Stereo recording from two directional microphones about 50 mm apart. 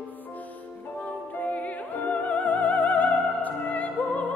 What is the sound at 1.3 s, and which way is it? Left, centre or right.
Opera, left.